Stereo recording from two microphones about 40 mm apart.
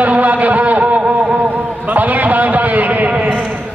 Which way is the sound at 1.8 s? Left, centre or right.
Right.